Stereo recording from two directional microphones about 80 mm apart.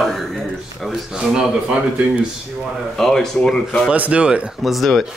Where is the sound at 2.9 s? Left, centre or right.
Centre.